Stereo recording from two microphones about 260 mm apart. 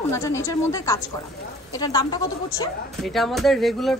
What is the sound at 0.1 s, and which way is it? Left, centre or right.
A woman's voice, centre.